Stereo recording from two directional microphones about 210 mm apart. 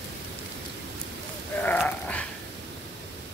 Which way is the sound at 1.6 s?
5° left (ahead or behind).